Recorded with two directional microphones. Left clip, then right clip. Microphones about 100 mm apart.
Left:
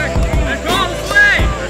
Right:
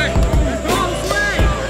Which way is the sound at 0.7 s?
40° left (ahead or behind).